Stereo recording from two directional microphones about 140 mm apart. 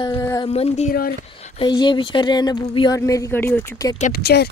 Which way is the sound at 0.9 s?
90° left.